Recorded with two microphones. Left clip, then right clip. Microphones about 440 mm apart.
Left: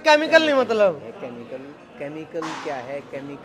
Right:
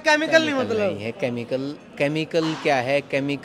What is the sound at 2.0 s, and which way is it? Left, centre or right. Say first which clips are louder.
Speech: right 8 dB; right.